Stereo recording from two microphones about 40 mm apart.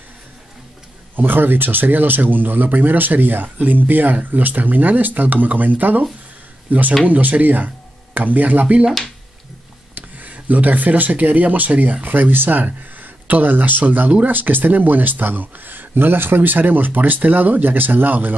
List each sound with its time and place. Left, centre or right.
1.1 s speech: right
3.4 s speech: right
9.9 s speech: right